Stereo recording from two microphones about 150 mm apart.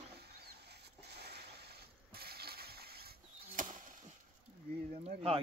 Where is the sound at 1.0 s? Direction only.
90° right.